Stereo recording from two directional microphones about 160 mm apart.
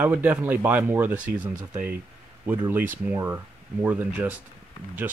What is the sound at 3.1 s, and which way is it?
Speech, 15° right (ahead or behind).